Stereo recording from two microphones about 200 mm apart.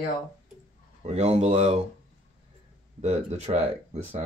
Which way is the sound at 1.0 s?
35° right (ahead or behind).